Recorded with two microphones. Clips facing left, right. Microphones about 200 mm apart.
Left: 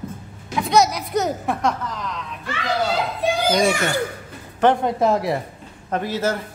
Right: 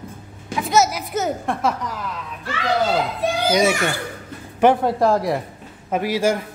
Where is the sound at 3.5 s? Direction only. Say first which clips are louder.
Right 2 dB; 5° right (ahead or behind).